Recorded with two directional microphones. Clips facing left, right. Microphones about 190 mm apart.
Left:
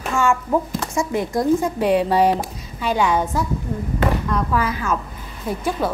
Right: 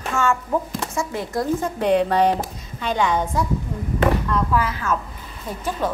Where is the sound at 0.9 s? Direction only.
15° left (ahead or behind).